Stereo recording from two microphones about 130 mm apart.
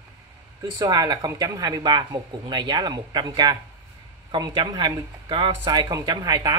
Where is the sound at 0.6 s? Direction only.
30° right (ahead or behind).